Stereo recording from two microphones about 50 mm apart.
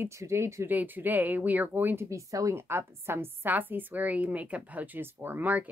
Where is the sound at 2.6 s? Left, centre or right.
Right.